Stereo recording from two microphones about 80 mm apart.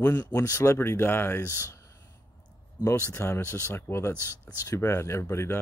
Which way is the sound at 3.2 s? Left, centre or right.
Left.